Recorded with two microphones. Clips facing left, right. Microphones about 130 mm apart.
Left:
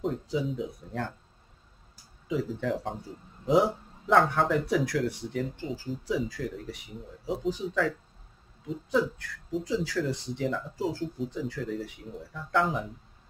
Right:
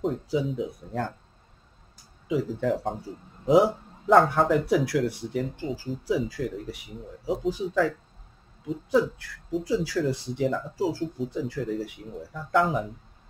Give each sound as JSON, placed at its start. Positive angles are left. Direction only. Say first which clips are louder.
{"t": 0.0, "sound": "speech", "louder": "right 3 dB", "side_deg": 0}
{"t": 2.2, "sound": "speech", "louder": "right 4 dB", "side_deg": -5}